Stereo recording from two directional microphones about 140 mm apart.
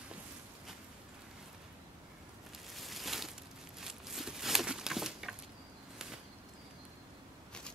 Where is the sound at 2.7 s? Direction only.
Centre (ahead or behind).